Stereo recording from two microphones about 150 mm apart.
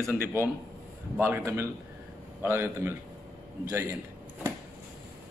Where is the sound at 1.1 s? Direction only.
15° right (ahead or behind).